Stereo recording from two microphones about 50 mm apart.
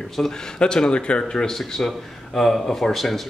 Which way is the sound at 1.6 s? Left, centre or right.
Centre.